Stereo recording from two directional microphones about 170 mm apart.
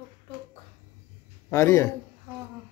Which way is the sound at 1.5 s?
15° left (ahead or behind).